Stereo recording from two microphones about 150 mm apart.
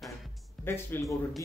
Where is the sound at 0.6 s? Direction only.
15° left (ahead or behind).